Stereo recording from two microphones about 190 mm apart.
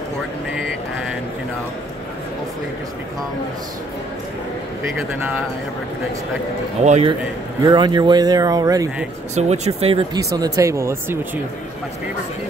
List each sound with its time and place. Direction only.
6.8 s speech: 35° right (ahead or behind)
7.6 s speech: 25° right (ahead or behind)
9.3 s speech: 35° right (ahead or behind)
10.1 s speech: 20° right (ahead or behind)